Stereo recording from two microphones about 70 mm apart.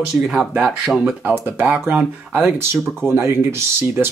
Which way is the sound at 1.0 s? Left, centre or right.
Right.